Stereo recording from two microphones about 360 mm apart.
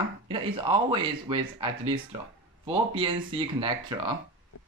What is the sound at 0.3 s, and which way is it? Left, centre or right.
Speech, centre.